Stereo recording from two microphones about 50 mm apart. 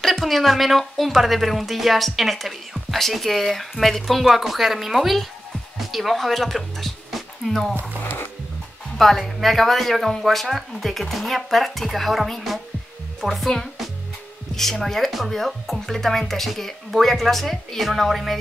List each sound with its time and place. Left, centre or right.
0.0 s speech: centre
8.0 s music: left
8.9 s speech: centre
14.5 s speech: centre